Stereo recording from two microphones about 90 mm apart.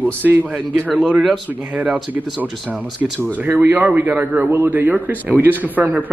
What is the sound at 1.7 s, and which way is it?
A man's voice, 15° right (ahead or behind).